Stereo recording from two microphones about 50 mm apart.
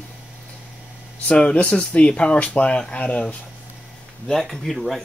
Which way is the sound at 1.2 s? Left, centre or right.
Left.